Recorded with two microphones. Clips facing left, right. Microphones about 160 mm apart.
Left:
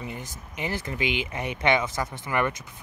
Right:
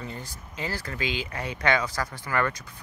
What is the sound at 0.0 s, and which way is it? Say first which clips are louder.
Speech: left 1 dB; 15° left (ahead or behind).